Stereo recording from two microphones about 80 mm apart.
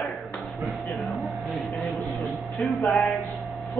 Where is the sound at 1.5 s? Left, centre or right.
Centre.